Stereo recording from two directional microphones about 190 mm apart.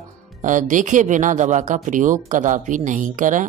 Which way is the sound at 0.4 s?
40° right (ahead or behind).